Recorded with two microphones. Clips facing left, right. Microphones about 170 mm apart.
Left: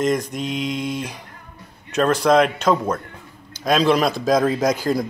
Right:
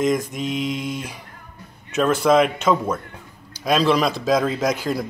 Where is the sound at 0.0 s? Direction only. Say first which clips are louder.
Even; centre (ahead or behind).